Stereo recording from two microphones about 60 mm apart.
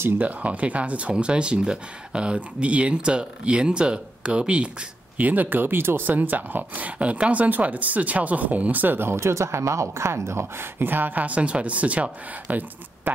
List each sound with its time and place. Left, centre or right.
0.2 s speech: right